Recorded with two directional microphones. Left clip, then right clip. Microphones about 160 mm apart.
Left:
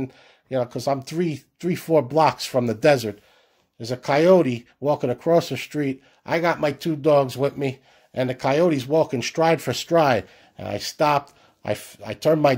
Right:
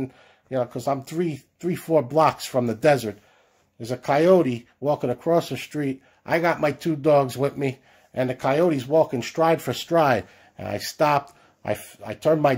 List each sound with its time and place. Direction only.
0.0 s speech: 30° left (ahead or behind); by 7.7 s 10° left (ahead or behind)
8.1 s speech: 30° left (ahead or behind)